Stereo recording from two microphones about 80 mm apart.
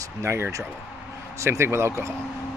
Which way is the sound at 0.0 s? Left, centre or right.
Right.